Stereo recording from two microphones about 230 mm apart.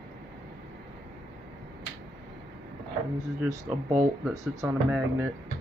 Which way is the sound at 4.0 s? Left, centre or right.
Centre.